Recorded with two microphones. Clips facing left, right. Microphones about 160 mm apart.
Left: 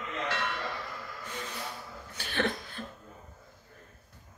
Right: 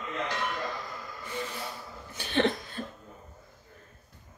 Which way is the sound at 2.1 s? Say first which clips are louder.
Right 5 dB; 20° right (ahead or behind).